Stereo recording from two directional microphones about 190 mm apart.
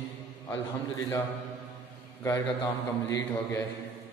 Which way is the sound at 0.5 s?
15° left (ahead or behind).